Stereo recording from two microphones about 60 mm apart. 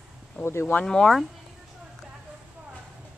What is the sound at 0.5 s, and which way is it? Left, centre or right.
Speech, left.